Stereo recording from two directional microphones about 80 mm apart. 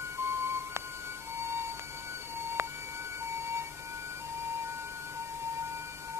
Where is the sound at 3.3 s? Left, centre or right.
Right.